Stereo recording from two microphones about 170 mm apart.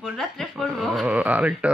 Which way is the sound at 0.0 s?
Centre (ahead or behind).